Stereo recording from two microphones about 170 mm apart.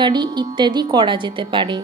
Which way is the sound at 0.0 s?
25° right (ahead or behind).